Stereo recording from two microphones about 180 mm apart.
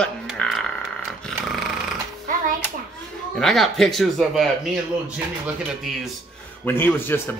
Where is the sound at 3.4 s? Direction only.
Centre (ahead or behind).